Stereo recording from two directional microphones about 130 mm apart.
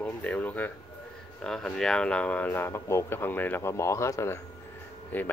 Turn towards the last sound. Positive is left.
turn(degrees=15)  # may be behind; listen again after turning